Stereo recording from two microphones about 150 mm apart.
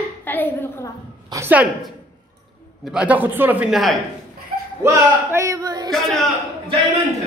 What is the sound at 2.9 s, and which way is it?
Speech, 10° right (ahead or behind).